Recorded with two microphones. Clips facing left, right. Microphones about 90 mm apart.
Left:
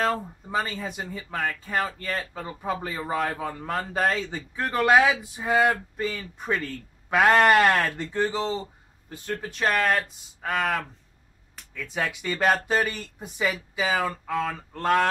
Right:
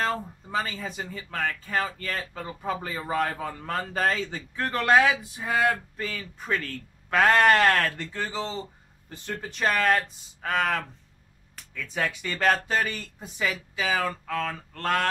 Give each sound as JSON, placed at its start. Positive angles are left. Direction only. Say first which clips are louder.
{"t": 0.0, "sound": "speech", "louder": "left 2 dB", "side_deg": 5}
{"t": 9.1, "sound": "speech", "louder": "left 3 dB", "side_deg": 0}